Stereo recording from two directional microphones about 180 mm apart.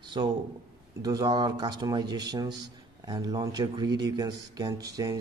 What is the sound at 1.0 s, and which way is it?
Speech, 20° right (ahead or behind).